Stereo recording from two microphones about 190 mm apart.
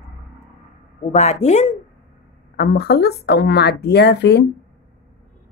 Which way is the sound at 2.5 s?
55° left (ahead or behind).